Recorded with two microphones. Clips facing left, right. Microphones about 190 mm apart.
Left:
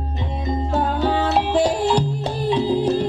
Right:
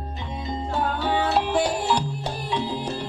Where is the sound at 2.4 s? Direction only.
30° left (ahead or behind).